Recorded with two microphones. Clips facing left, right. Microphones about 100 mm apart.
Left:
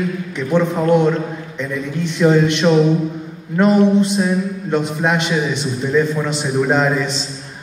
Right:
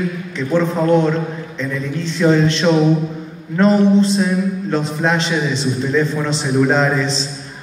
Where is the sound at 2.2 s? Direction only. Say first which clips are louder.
Left 1 dB; 10° left (ahead or behind).